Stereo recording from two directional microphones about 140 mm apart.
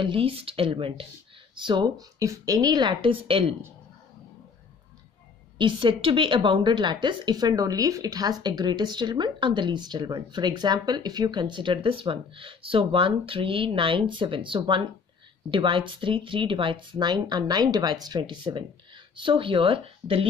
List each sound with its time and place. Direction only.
0.0 s a woman's voice: 40° right (ahead or behind)
5.6 s a woman's voice: 35° right (ahead or behind)